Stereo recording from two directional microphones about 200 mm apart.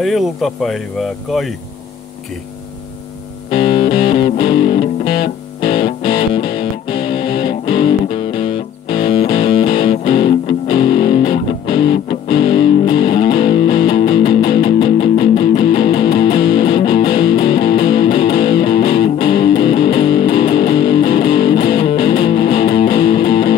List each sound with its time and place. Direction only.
0.0 s speech: centre (ahead or behind)
3.4 s music: 25° left (ahead or behind)